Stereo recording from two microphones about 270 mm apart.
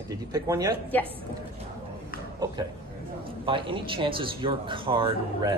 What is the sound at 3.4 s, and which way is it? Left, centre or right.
Speech, centre.